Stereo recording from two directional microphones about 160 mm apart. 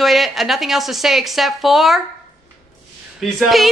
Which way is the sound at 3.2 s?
Centre (ahead or behind).